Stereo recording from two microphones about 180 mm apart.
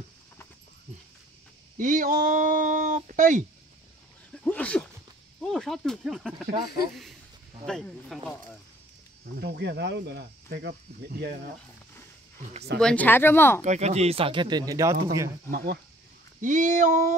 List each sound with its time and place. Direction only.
1.8 s speech: 45° right (ahead or behind)
4.5 s dog: 5° left (ahead or behind)
5.4 s speech: centre (ahead or behind)
7.6 s speech: 5° left (ahead or behind)
9.2 s speech: 65° right (ahead or behind)
12.7 s speech: 5° left (ahead or behind)
13.6 s speech: 40° right (ahead or behind); by 15.3 s 15° right (ahead or behind)
15.5 s speech: 65° right (ahead or behind)
16.3 s speech: 45° right (ahead or behind)